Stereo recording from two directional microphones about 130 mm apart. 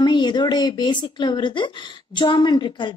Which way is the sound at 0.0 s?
35° left (ahead or behind).